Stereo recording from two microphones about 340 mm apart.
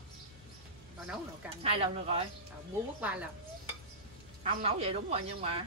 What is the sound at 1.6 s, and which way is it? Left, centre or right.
Speech, centre.